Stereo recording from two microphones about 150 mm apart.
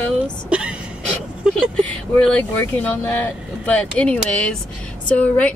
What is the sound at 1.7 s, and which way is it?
Speech, 10° left (ahead or behind).